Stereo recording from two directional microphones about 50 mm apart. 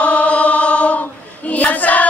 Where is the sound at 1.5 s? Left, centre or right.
Left.